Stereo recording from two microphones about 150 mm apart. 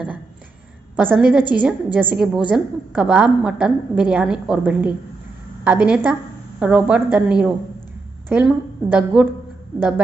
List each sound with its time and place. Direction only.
0.9 s a woman's voice: 10° right (ahead or behind)